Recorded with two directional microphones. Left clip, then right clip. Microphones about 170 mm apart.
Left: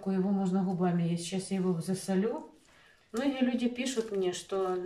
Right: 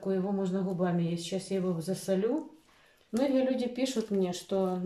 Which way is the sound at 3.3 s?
25° right (ahead or behind).